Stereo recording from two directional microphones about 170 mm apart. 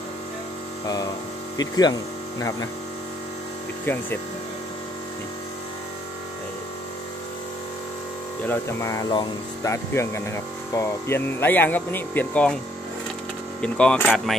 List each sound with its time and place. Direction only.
1.6 s speech: 25° left (ahead or behind)
3.8 s speech: 10° left (ahead or behind)
8.5 s speech: 15° left (ahead or behind)
13.6 s speech: 5° left (ahead or behind)